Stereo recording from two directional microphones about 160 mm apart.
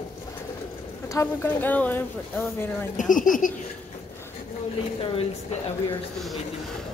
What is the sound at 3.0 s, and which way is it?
Speech, 55° left (ahead or behind).